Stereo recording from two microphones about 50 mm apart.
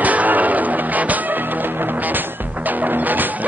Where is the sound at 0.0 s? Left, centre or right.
Right.